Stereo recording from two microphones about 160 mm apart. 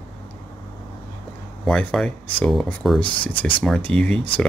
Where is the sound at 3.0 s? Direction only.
35° left (ahead or behind).